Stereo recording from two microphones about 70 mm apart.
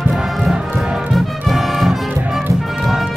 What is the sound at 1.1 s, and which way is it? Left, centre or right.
Brass instrument, centre.